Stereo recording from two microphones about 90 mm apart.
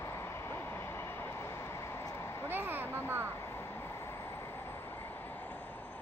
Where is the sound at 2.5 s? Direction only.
25° right (ahead or behind).